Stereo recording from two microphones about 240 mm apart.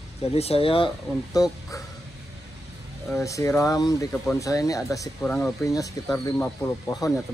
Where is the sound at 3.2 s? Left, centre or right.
Centre.